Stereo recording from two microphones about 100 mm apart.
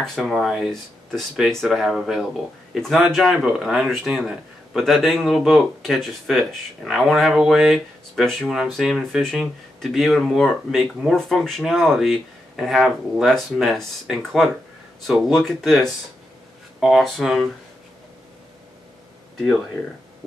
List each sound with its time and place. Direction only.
0.0 s a man's voice: centre (ahead or behind)